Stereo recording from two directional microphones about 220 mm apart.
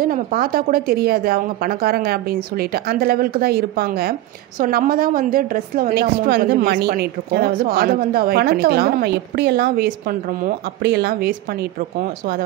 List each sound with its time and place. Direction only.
0.0 s a woman's voice: 40° right (ahead or behind)